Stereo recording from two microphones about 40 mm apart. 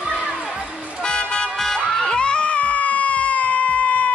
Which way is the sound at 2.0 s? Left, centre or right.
Left.